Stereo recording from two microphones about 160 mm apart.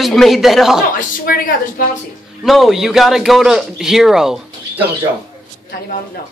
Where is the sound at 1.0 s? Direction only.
60° left (ahead or behind).